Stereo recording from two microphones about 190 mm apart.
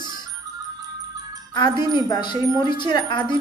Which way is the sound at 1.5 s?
25° left (ahead or behind).